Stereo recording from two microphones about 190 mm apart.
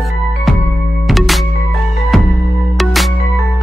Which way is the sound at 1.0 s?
Centre (ahead or behind).